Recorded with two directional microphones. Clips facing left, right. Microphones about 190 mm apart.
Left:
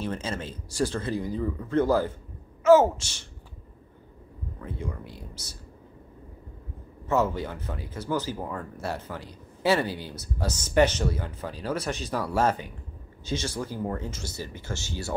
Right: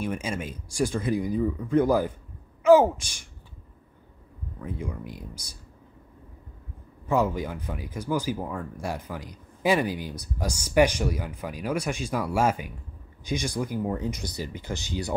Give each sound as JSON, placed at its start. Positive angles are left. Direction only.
{"t": 0.0, "sound": "a woman's voice", "side_deg": -10}
{"t": 4.6, "sound": "speech", "side_deg": -10}
{"t": 7.1, "sound": "speech", "side_deg": -15}